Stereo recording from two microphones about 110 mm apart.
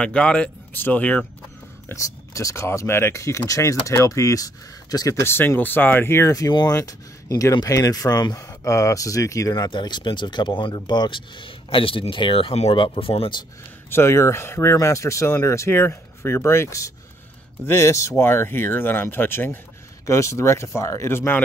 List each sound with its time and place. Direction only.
0.0 s speech: 10° left (ahead or behind)
1.9 s speech: 30° left (ahead or behind)
5.2 s speech: 20° left (ahead or behind)
9.7 s speech: 45° left (ahead or behind)
13.8 s speech: 25° left (ahead or behind)